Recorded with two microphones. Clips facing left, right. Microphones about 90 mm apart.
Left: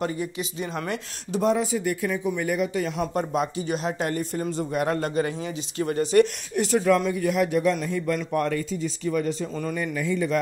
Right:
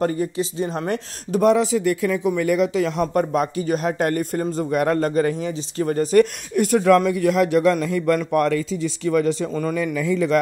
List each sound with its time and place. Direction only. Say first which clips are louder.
0.0 s speech: right 6 dB; 40° right (ahead or behind)
0.8 s speech: right 5 dB; 45° right (ahead or behind)
1.4 s speech: right 6 dB; 85° right
3.1 s speech: right 5 dB; 50° right (ahead or behind)
7.1 s speech: right 5 dB; 90° right
9.5 s speech: right 6 dB; 50° right (ahead or behind)
10.3 s speech: right 6 dB; 85° right